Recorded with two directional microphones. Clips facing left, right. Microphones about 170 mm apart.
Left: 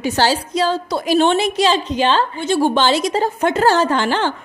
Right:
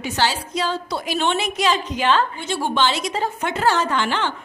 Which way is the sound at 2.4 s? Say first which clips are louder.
Left 6 dB; 40° left (ahead or behind).